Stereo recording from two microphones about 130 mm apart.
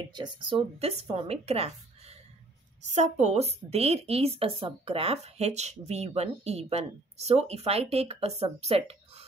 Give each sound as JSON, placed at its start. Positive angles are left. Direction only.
{"t": 0.1, "sound": "a woman's voice", "side_deg": -35}